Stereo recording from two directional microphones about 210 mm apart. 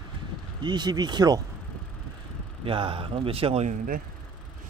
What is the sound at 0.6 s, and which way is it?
Speech, 20° right (ahead or behind).